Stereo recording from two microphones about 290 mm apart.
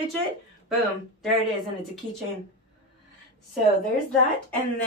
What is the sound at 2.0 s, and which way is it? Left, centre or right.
Speech, right.